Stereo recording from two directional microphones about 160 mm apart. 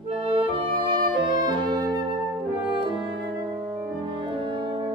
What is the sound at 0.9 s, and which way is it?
Music, 30° right (ahead or behind).